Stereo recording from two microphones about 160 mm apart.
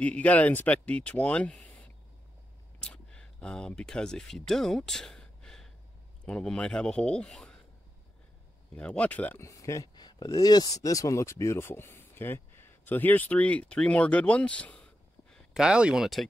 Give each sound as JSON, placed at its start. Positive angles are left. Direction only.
{"t": 0.0, "sound": "speech", "side_deg": 10}
{"t": 8.7, "sound": "speech", "side_deg": 5}
{"t": 15.5, "sound": "speech", "side_deg": -5}